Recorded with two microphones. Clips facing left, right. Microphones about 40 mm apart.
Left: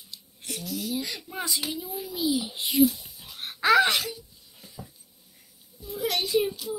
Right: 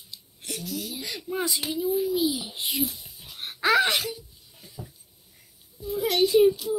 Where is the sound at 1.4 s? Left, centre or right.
Right.